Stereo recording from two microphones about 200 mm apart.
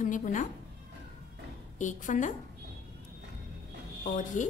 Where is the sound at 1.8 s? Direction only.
40° left (ahead or behind).